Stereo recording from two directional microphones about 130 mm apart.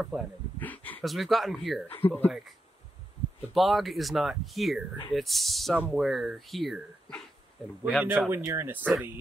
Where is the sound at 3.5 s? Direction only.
Centre (ahead or behind).